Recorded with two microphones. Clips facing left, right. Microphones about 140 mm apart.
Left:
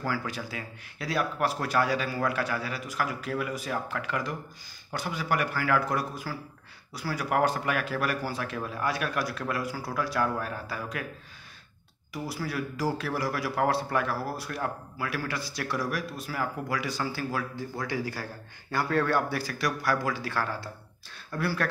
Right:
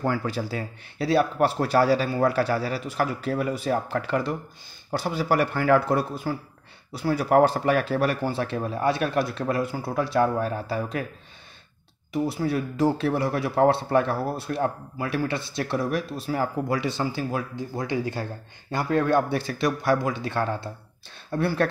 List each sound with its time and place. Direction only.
0.0 s speech: 30° right (ahead or behind)
12.1 s speech: 25° right (ahead or behind)